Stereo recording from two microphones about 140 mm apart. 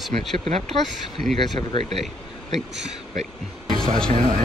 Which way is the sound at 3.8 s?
5° left (ahead or behind).